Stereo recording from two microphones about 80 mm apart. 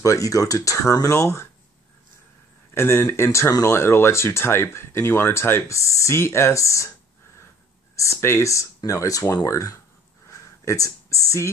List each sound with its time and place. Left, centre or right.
0.0 s speech: left
2.7 s speech: left
7.9 s speech: left
10.2 s a sound: left